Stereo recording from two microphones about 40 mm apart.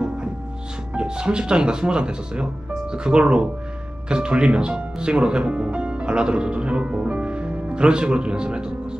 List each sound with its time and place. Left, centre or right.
0.9 s speech: right